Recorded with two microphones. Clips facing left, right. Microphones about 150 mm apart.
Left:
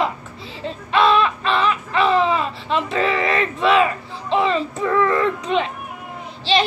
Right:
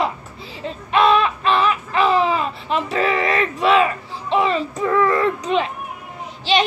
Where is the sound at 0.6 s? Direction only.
30° left (ahead or behind).